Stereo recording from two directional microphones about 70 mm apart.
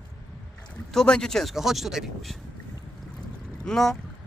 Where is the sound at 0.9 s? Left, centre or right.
Centre.